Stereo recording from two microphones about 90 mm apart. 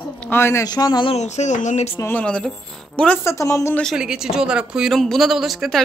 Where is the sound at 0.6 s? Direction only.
50° left (ahead or behind).